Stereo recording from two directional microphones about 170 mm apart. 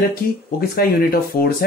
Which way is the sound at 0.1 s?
60° left (ahead or behind).